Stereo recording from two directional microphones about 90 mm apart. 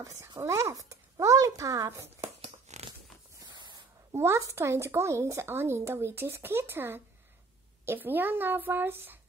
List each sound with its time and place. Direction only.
0.0 s speech: 35° right (ahead or behind)
3.4 s spray: 60° right (ahead or behind)
4.1 s speech: 30° right (ahead or behind)